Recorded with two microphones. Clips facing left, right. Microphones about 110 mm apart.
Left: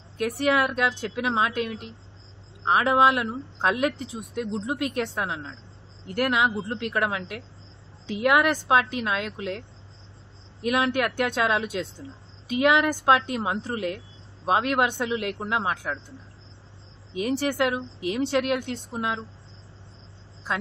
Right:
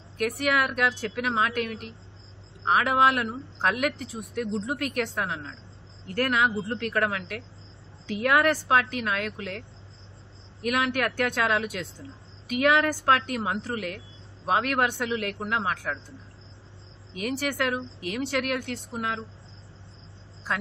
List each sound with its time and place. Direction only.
0.2 s speech: 25° left (ahead or behind)
10.6 s speech: 25° left (ahead or behind)
17.1 s speech: 25° left (ahead or behind)